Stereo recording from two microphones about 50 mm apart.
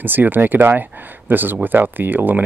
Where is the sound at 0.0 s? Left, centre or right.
Right.